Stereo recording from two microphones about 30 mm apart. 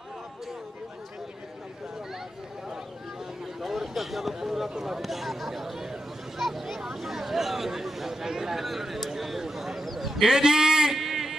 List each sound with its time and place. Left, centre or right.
3.6 s vehicle: centre
4.3 s speech: centre
5.0 s speech: centre
9.4 s a sound: centre
10.2 s speech: centre
10.9 s a sound: centre